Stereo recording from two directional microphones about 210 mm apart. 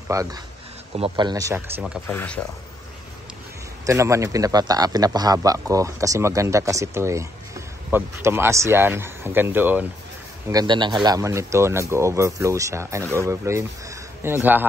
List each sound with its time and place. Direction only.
0.1 s a man's voice: 15° right (ahead or behind)
2.0 s speech: 10° left (ahead or behind)
3.8 s a man's voice: 15° right (ahead or behind)
10.5 s a man's voice: 20° right (ahead or behind)